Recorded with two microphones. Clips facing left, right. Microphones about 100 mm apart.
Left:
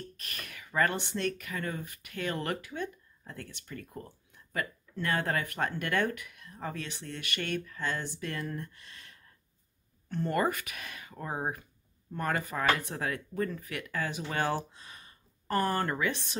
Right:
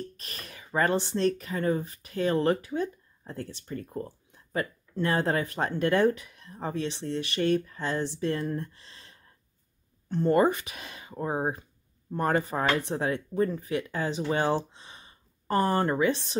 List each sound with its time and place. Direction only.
0.2 s speech: 30° right (ahead or behind)